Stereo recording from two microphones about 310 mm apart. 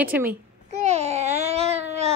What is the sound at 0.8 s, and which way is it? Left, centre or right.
Babbling, right.